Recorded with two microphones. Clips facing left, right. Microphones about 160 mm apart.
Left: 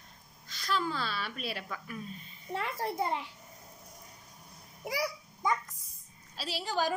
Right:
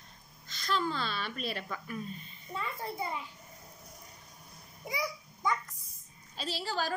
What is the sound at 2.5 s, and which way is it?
Speech, 80° left.